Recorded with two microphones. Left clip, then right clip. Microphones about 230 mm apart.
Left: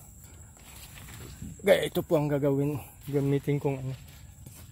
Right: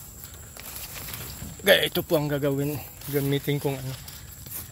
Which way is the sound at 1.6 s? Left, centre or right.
Left.